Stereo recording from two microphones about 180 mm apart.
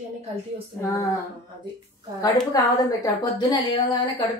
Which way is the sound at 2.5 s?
20° left (ahead or behind).